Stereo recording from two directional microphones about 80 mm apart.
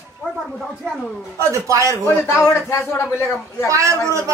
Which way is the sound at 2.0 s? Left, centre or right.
Left.